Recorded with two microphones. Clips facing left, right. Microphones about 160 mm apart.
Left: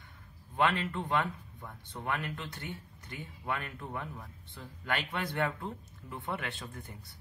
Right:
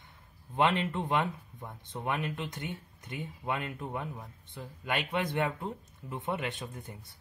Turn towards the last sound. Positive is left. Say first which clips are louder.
# right 3 dB
turn(degrees=-20)  # may be behind; listen again after turning